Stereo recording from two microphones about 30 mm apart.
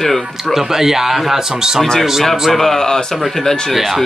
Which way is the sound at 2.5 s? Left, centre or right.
Centre.